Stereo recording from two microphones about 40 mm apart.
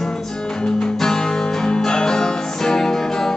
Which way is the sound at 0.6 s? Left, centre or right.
Centre.